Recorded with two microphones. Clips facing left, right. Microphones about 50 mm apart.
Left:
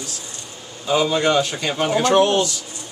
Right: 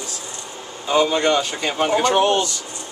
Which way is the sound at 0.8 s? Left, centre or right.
Centre.